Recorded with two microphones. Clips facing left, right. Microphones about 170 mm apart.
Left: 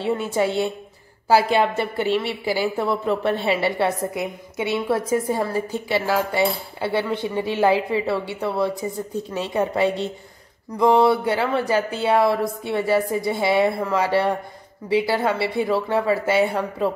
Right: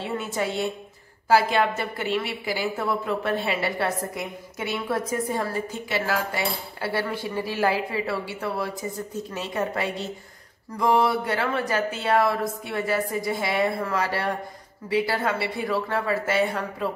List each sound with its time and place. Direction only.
0.3 s a woman's voice: 30° left (ahead or behind)